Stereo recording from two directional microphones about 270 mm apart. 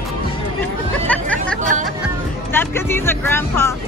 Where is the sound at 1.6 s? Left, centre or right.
Right.